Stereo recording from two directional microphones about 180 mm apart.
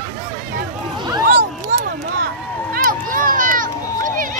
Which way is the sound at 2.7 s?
50° right (ahead or behind).